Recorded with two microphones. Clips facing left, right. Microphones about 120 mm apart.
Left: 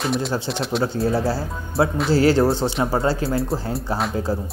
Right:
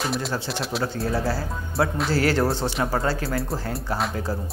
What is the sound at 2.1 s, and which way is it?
Speech, 25° left (ahead or behind).